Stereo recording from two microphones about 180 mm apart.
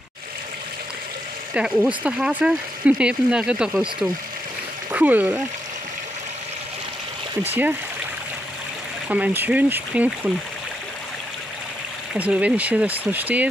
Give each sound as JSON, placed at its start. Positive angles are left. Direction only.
{"t": 1.5, "sound": "speech", "side_deg": -5}
{"t": 4.9, "sound": "speech", "side_deg": -10}
{"t": 7.4, "sound": "speech", "side_deg": -10}
{"t": 9.1, "sound": "speech", "side_deg": -10}
{"t": 12.1, "sound": "speech", "side_deg": -5}